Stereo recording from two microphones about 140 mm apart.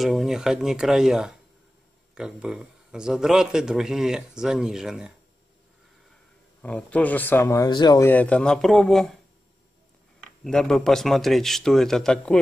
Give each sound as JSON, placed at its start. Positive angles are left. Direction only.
{"t": 0.0, "sound": "speech", "side_deg": 0}
{"t": 6.6, "sound": "speech", "side_deg": 10}
{"t": 8.0, "sound": "speech", "side_deg": 10}
{"t": 10.2, "sound": "speech", "side_deg": 5}